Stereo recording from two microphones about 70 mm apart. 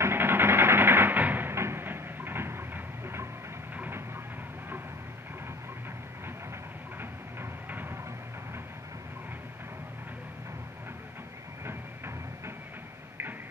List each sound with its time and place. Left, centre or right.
0.0 s music: right
1.5 s a sound: right
3.7 s vehicle: right
7.0 s music: right